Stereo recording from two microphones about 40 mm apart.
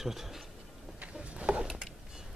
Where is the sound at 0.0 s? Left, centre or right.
Centre.